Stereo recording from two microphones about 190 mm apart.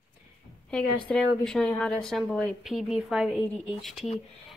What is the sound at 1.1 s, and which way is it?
A woman's voice, 5° left (ahead or behind).